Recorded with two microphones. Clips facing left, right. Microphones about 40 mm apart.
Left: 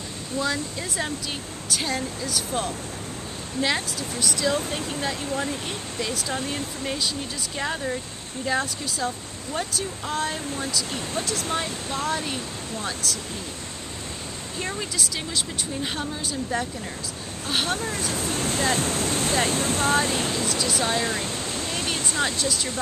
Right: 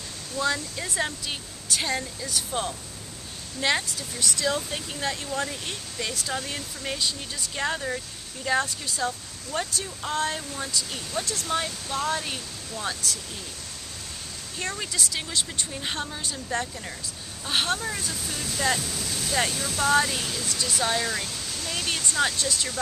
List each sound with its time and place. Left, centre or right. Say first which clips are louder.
0.4 s speech: even; centre
11.5 s speech: right 3 dB; centre
14.6 s speech: left 1 dB; centre
18.0 s speech: left 6 dB; left
20.6 s speech: right 1 dB; centre
21.0 s waterfall: left 3 dB; left
21.8 s waterfall: right 1 dB; centre
22.4 s speech: left 2 dB; centre